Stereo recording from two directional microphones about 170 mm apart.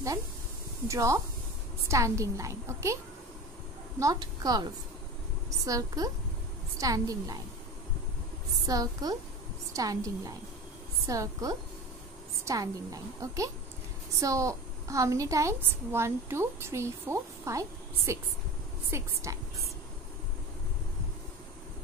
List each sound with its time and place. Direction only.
0.8 s a woman's voice: 20° right (ahead or behind)
4.0 s a woman's voice: 20° right (ahead or behind)
8.6 s a woman's voice: 20° right (ahead or behind)